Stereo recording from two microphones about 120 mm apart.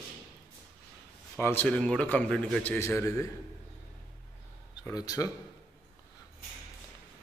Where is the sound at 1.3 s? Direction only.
15° left (ahead or behind).